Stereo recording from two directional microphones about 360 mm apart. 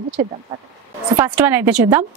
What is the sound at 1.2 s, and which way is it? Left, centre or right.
Speech, centre.